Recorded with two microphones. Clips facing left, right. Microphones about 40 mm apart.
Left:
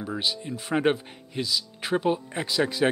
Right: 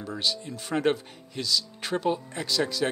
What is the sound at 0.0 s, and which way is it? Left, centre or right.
A man's voice, centre.